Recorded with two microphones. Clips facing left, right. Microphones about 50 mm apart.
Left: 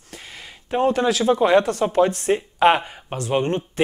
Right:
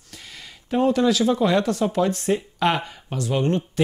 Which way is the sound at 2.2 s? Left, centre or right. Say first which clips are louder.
Left 5 dB; left.